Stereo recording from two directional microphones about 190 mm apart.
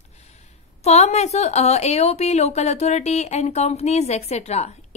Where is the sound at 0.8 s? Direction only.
35° left (ahead or behind).